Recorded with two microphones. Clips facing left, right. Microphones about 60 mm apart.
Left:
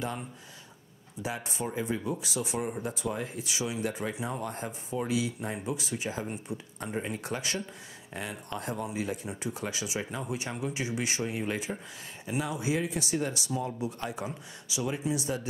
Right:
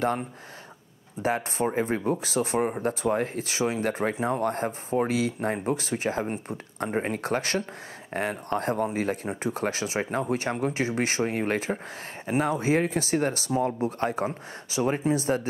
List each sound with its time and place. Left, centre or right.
1.2 s speech: right